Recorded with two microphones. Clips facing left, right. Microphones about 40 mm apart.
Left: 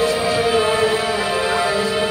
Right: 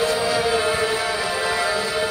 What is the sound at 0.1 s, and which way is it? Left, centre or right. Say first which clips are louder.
Music: left 3 dB; left.